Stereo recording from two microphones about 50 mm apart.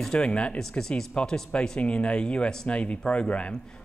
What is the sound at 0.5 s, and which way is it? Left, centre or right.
A man's voice, centre.